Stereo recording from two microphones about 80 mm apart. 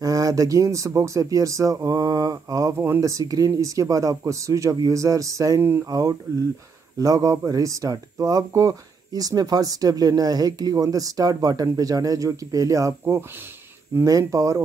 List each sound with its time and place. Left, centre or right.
0.0 s speech: right
2.7 s speech: right
3.0 s speech: right
5.6 s speech: right
5.9 s speech: right